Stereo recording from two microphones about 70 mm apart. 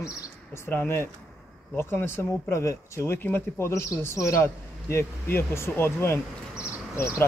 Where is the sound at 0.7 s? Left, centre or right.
Left.